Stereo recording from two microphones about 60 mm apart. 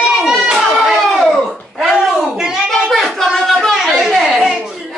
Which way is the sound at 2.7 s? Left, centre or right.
Centre.